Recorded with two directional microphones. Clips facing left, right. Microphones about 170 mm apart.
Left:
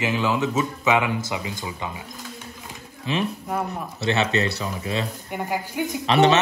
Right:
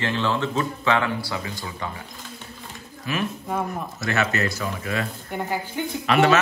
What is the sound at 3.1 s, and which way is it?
Speech, 25° left (ahead or behind).